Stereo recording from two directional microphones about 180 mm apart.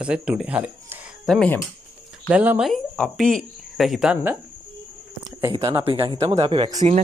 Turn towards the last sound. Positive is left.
turn(degrees=-30)  # may be behind; listen again after turning